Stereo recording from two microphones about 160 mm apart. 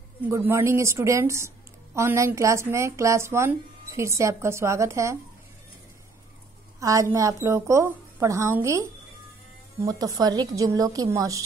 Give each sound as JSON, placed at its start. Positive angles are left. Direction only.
{"t": 0.3, "sound": "speech", "side_deg": -15}
{"t": 6.8, "sound": "a woman's voice", "side_deg": -20}
{"t": 9.8, "sound": "a woman's voice", "side_deg": -25}